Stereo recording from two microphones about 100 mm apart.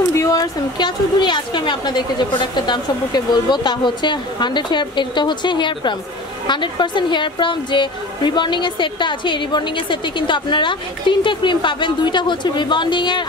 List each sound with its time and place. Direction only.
0.1 s a woman's voice: 30° left (ahead or behind); by 13.2 s 50° left (ahead or behind)